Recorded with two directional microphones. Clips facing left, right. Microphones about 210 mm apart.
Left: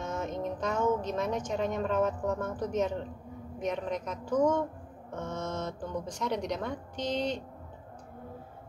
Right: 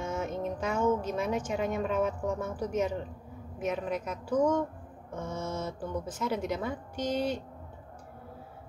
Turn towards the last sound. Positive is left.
turn(degrees=-10)  # may be behind; listen again after turning